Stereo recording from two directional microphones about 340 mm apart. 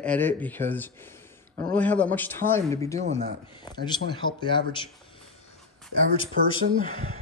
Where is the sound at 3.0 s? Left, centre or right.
Centre.